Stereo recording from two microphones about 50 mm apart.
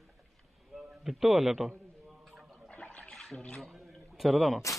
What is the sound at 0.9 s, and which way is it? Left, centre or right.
Speech, centre.